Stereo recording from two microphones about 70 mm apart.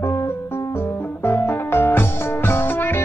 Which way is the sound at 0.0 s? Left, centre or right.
Left.